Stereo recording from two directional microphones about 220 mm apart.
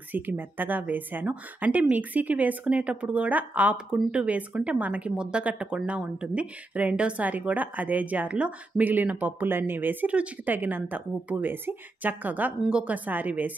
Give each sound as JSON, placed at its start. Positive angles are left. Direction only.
{"t": 0.1, "sound": "speech", "side_deg": -10}